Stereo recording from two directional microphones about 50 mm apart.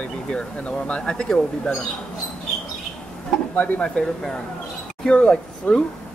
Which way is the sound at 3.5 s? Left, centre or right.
Left.